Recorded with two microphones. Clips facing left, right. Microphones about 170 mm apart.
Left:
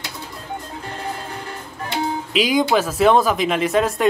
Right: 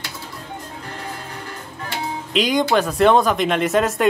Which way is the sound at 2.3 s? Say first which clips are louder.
Even; 5° left (ahead or behind).